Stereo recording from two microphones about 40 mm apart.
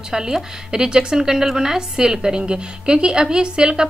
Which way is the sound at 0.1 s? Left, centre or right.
Centre.